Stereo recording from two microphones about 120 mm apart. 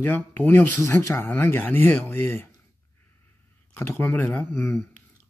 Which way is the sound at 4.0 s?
15° left (ahead or behind).